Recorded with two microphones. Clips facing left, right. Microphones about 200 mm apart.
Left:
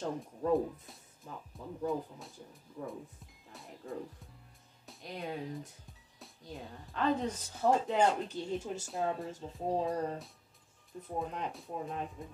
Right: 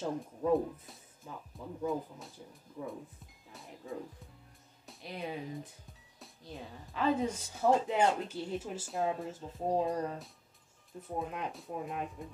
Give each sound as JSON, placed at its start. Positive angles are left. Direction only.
{"t": 0.0, "sound": "a woman's voice", "side_deg": 0}
{"t": 3.5, "sound": "music", "side_deg": 0}
{"t": 4.8, "sound": "a woman's voice", "side_deg": 0}